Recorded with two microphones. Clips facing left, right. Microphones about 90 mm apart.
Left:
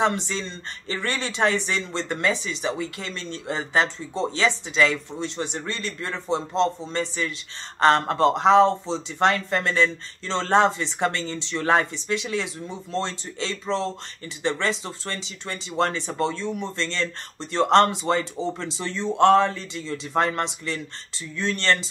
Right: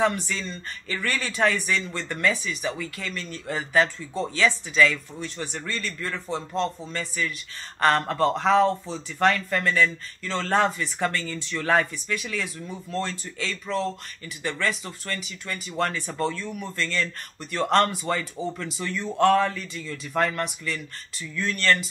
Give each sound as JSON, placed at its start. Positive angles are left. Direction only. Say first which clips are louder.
{"t": 0.0, "sound": "speech", "louder": "left 1 dB", "side_deg": 25}